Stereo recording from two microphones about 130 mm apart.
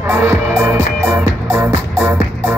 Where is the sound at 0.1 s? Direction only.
20° right (ahead or behind).